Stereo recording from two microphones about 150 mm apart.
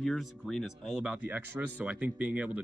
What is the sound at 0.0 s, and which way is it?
Speech, centre (ahead or behind).